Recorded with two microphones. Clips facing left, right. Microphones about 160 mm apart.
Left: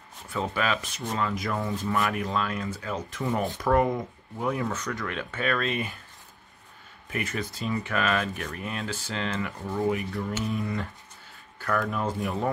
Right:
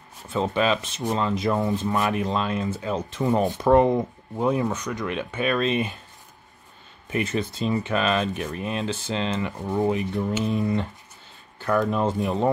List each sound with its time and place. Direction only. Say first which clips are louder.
0.3 s speech: right 5 dB; 20° right (ahead or behind)
7.1 s speech: right 6 dB; 25° right (ahead or behind)